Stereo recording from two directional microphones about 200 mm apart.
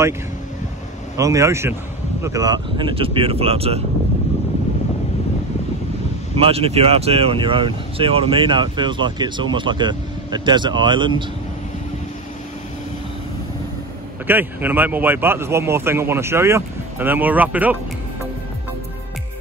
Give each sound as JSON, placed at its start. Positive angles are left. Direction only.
{"t": 1.1, "sound": "speech", "side_deg": -15}
{"t": 6.3, "sound": "speech", "side_deg": -30}
{"t": 14.2, "sound": "speech", "side_deg": -10}